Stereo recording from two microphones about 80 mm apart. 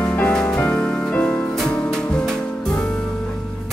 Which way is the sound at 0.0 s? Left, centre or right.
Centre.